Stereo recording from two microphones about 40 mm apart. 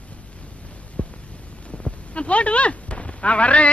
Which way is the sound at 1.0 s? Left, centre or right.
Left.